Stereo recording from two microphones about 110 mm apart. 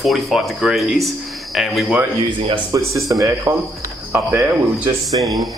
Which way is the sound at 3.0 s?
30° right (ahead or behind).